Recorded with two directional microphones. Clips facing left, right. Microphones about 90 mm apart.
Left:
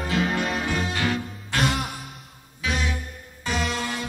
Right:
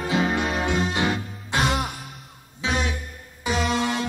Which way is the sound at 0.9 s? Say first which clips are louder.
Right 2 dB; 20° right (ahead or behind).